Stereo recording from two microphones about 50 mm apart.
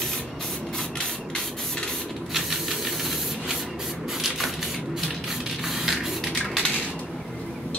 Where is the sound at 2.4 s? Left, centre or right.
Centre.